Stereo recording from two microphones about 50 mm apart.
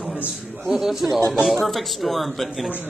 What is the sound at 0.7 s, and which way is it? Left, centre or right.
A man's voice, centre.